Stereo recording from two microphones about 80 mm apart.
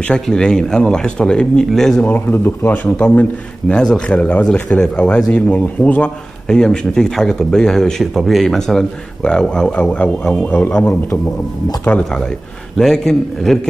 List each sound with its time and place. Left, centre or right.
0.1 s a man's voice: centre
2.0 s speech: left
12.0 s a man's voice: centre